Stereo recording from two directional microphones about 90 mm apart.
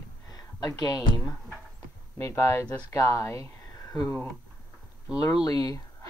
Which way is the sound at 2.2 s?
30° left (ahead or behind).